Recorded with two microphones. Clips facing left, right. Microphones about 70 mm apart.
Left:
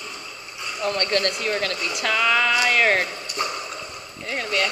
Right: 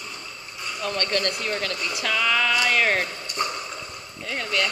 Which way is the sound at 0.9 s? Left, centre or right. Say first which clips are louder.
Left 3 dB; left.